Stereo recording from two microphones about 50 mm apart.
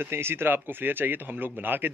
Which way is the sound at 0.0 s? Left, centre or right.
Right.